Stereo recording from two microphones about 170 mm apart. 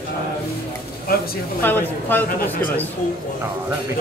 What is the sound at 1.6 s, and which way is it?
Speech, 10° left (ahead or behind).